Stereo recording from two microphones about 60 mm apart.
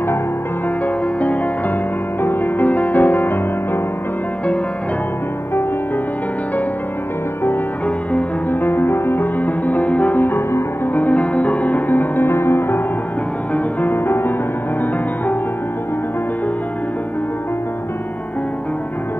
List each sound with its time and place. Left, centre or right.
2.2 s music: left
8.1 s music: left